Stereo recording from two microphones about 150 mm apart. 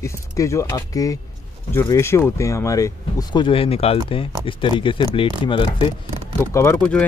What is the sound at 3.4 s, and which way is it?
Speech, 40° left (ahead or behind).